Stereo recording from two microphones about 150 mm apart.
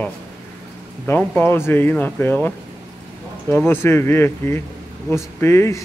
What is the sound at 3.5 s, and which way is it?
Speech, 15° left (ahead or behind).